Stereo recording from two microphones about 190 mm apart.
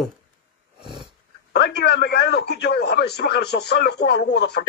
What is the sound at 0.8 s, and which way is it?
Dog, 25° right (ahead or behind).